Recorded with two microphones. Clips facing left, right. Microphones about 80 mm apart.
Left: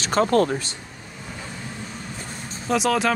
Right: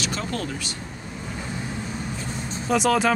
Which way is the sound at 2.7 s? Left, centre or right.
Centre.